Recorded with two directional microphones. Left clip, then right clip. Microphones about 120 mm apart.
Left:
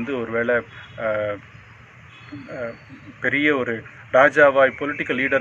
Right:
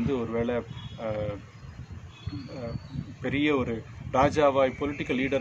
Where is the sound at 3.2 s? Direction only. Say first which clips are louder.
Left 7 dB; 30° right (ahead or behind).